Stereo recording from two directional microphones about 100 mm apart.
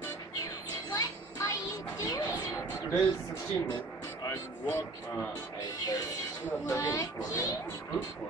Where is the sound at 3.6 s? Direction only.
40° left (ahead or behind).